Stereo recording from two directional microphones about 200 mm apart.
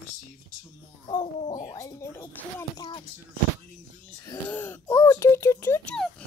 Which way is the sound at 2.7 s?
20° left (ahead or behind).